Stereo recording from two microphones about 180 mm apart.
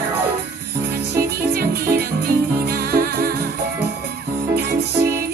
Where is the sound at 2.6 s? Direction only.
55° right (ahead or behind).